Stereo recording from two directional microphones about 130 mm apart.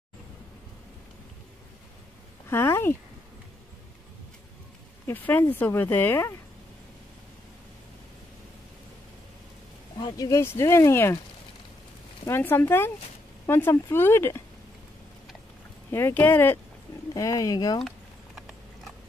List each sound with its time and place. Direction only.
2.5 s speech: 20° left (ahead or behind)
5.0 s speech: 15° left (ahead or behind)
9.9 s speech: 30° left (ahead or behind)
12.3 s speech: 15° left (ahead or behind)
15.9 s speech: 15° left (ahead or behind)
17.1 s speech: 30° left (ahead or behind)
17.8 s a sound: centre (ahead or behind)